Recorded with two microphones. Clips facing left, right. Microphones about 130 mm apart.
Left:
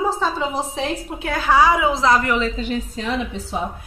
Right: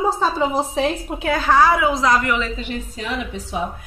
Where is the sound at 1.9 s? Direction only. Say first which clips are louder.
Left 1 dB; 30° left (ahead or behind).